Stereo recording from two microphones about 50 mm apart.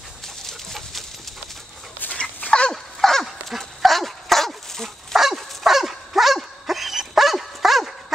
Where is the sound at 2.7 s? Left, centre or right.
Centre.